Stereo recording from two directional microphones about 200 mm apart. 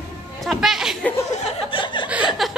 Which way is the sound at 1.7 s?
25° left (ahead or behind).